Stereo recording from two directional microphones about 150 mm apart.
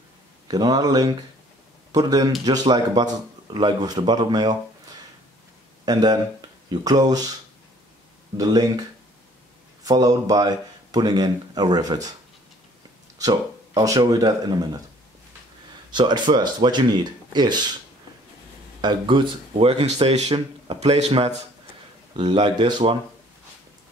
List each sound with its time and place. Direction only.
0.5 s speech: 25° right (ahead or behind)
5.9 s speech: 25° right (ahead or behind)
8.4 s speech: 25° right (ahead or behind)
9.8 s speech: 25° right (ahead or behind)
13.2 s speech: 25° right (ahead or behind)
15.9 s speech: 30° right (ahead or behind)
18.8 s speech: 30° right (ahead or behind)
22.1 s speech: 30° right (ahead or behind)